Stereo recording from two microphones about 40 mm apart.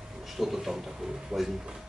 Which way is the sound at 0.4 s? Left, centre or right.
Centre.